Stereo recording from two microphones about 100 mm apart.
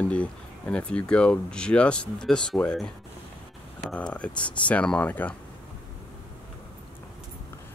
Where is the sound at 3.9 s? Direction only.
10° left (ahead or behind).